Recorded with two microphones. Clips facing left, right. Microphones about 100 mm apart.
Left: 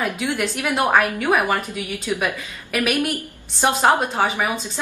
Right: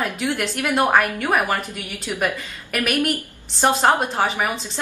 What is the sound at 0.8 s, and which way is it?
A woman's voice, 15° left (ahead or behind).